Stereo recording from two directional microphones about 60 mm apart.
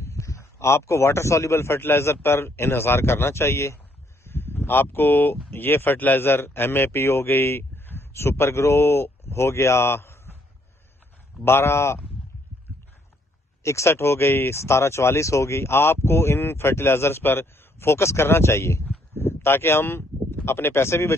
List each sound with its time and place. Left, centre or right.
0.0 s a man's voice: left
11.4 s speech: left
13.6 s speech: left
19.1 s a sound: left
20.4 s speech: left